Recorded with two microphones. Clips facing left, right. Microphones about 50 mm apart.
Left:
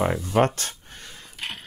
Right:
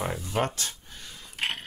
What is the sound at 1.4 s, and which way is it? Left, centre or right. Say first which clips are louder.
Cutlery: right 4 dB; right.